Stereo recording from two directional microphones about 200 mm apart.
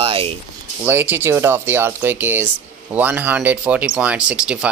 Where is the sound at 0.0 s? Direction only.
25° right (ahead or behind).